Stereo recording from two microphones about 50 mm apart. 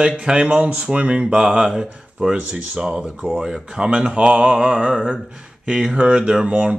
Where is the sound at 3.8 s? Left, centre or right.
Right.